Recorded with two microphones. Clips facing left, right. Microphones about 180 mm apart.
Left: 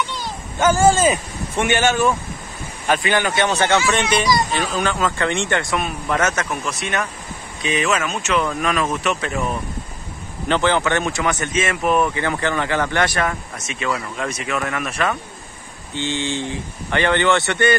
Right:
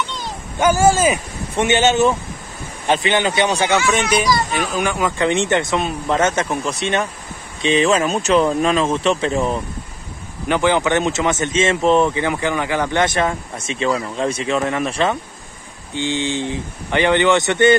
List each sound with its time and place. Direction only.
0.6 s a man's voice: 10° right (ahead or behind); by 9.6 s 30° right (ahead or behind)
10.5 s a man's voice: 15° right (ahead or behind)
15.9 s speech: 15° right (ahead or behind)